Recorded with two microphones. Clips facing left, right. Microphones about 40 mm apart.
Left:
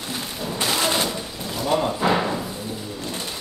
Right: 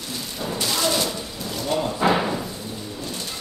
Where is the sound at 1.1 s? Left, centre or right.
Centre.